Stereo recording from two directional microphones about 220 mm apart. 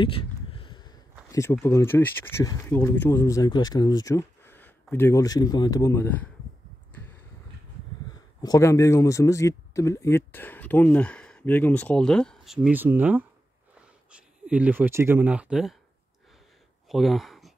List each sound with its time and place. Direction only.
0.0 s a sound: 25° left (ahead or behind)
1.3 s speech: 10° left (ahead or behind)
8.4 s speech: 15° left (ahead or behind); by 15.7 s 5° right (ahead or behind)
16.9 s speech: centre (ahead or behind)